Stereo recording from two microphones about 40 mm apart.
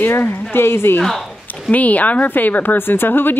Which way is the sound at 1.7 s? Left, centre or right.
Left.